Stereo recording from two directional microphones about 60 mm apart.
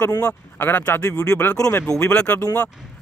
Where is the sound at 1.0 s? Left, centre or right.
Left.